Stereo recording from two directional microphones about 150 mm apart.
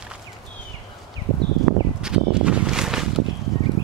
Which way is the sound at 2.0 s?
5° right (ahead or behind).